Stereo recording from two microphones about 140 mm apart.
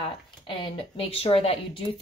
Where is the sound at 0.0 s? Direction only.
40° left (ahead or behind).